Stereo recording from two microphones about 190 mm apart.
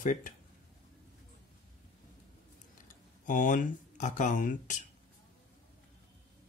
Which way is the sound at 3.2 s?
45° left (ahead or behind).